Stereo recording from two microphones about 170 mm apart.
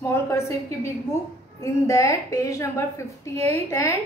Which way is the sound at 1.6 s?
20° left (ahead or behind).